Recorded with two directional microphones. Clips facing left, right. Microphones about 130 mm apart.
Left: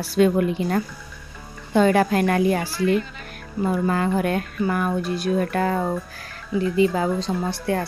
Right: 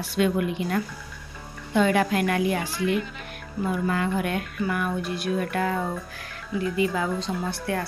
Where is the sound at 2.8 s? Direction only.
10° right (ahead or behind).